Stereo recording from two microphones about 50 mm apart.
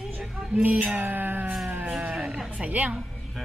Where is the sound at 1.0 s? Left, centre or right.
Right.